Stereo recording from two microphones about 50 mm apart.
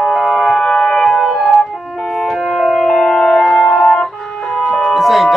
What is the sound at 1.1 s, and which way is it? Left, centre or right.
Organ, centre.